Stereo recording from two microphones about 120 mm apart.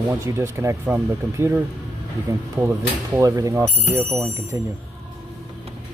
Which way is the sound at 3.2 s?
30° right (ahead or behind).